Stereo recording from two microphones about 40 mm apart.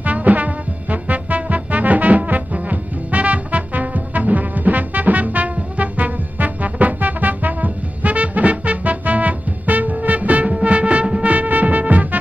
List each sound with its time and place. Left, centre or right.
0.0 s brass instrument: right